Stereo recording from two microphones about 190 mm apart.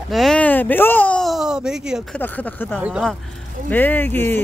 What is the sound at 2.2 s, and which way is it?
Speech, 10° left (ahead or behind).